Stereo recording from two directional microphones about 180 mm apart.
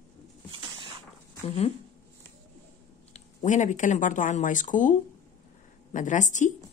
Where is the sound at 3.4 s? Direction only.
45° left (ahead or behind).